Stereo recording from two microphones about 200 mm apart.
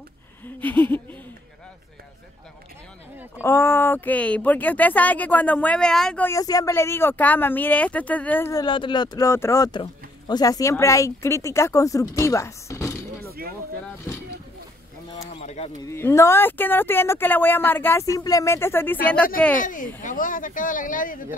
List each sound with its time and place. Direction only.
0.6 s speech: 10° left (ahead or behind)
3.3 s speech: 10° left (ahead or behind)
8.6 s speech: 25° left (ahead or behind)
13.2 s a sound: 50° right (ahead or behind)
15.4 s a sound: 35° left (ahead or behind)
15.8 s speech: 15° left (ahead or behind)
19.6 s speech: 40° left (ahead or behind)